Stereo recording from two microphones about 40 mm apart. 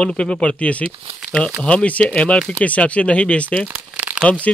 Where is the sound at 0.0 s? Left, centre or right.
Left.